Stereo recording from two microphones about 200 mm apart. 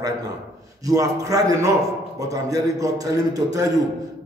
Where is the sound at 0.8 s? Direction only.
15° right (ahead or behind).